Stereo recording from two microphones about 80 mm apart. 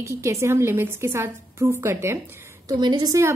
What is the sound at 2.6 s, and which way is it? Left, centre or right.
Speech, right.